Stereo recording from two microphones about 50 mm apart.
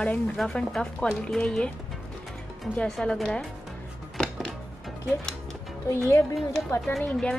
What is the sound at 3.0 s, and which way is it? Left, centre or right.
Speech, centre.